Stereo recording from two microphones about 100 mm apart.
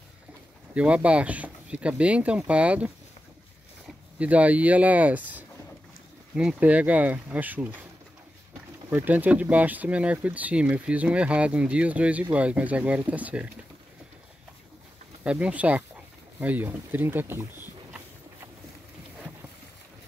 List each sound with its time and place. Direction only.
0.7 s speech: 10° right (ahead or behind)
4.2 s speech: 15° right (ahead or behind)
8.9 s speech: 20° right (ahead or behind)
15.2 s speech: 10° right (ahead or behind)